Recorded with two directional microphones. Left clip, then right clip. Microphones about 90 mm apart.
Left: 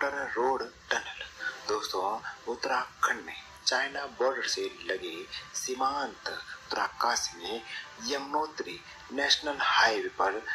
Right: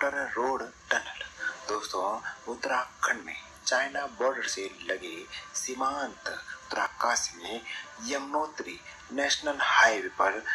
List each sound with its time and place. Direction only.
0.0 s speech: centre (ahead or behind)
1.1 s music: 10° left (ahead or behind)
1.9 s a man's voice: 10° left (ahead or behind)